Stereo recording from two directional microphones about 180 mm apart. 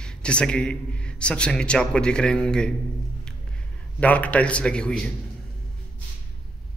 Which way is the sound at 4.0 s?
10° left (ahead or behind).